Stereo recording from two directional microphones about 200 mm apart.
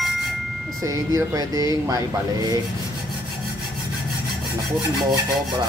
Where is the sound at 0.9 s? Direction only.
15° right (ahead or behind).